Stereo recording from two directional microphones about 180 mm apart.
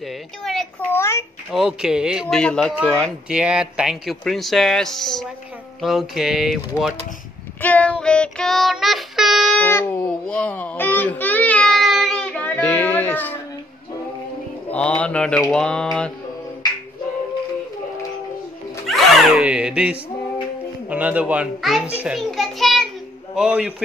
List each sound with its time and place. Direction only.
0.4 s speech: centre (ahead or behind)
0.9 s mantra: 15° left (ahead or behind)
1.5 s speech: 5° right (ahead or behind)
2.7 s a child's voice: 5° right (ahead or behind)
7.6 s child singing: 10° left (ahead or behind)
14.7 s mantra: 5° left (ahead or behind)
15.5 s speech: 5° left (ahead or behind)
18.9 s a sound: 5° right (ahead or behind)
20.9 s a child's voice: 10° right (ahead or behind)